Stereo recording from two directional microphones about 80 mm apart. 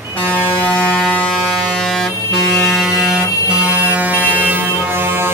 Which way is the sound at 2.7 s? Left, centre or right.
Centre.